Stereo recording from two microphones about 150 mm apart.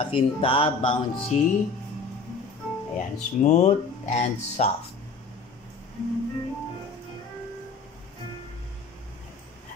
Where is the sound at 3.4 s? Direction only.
50° left (ahead or behind).